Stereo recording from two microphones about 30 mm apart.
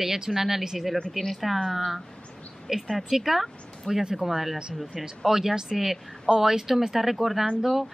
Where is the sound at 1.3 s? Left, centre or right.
Centre.